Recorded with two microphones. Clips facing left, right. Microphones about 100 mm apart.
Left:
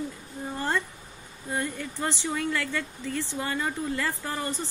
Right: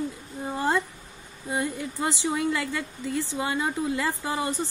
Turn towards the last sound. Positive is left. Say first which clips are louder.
# right 4 dB
turn(degrees=-15)  # may be behind; listen again after turning